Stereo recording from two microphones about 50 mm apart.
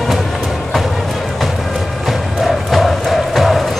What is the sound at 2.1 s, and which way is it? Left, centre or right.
Music, centre.